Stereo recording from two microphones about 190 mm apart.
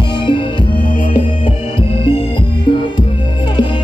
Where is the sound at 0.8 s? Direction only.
45° left (ahead or behind).